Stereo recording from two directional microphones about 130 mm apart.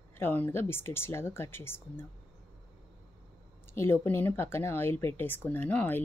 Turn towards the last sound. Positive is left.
turn(degrees=15)  # may be behind; listen again after turning